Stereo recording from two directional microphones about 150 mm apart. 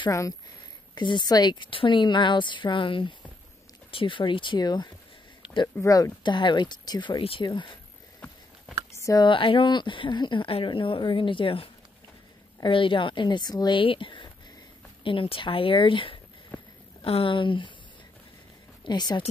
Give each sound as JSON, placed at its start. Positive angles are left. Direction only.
{"t": 0.9, "sound": "speech", "side_deg": 30}
{"t": 8.9, "sound": "speech", "side_deg": 25}
{"t": 18.9, "sound": "speech", "side_deg": 30}